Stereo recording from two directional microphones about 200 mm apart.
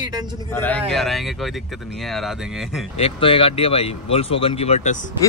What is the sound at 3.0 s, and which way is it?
Speech, 25° left (ahead or behind).